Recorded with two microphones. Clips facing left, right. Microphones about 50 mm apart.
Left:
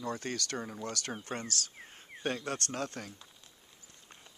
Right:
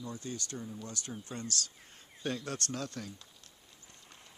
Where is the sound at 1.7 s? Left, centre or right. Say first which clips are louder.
Left 5 dB; left.